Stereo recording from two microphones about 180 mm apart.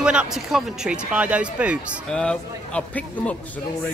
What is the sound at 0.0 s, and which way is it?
Speech, 5° right (ahead or behind).